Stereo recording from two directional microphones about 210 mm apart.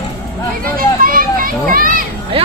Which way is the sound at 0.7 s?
40° right (ahead or behind).